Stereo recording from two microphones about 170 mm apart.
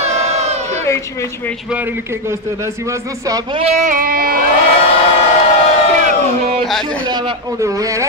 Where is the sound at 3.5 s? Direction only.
40° right (ahead or behind); by 4.4 s 60° right (ahead or behind).